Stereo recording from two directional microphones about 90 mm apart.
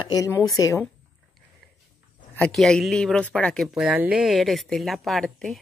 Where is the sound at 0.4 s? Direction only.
40° left (ahead or behind).